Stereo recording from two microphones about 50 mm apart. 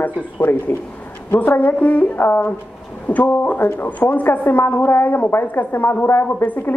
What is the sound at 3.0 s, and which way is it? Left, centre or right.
Speech, left.